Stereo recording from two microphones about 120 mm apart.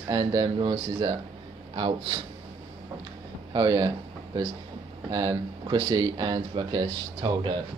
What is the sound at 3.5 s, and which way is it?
Speech, 30° right (ahead or behind).